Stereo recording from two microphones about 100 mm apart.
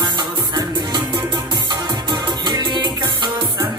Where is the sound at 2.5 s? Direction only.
45° right (ahead or behind).